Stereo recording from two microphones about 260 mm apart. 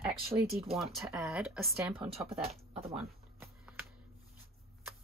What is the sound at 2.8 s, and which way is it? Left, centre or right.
Speech, right.